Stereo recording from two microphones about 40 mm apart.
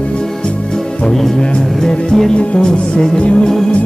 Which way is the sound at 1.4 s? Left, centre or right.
Centre.